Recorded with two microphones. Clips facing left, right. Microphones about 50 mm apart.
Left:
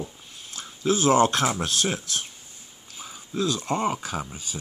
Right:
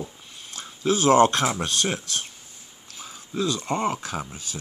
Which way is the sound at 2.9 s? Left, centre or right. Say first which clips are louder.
Even; centre.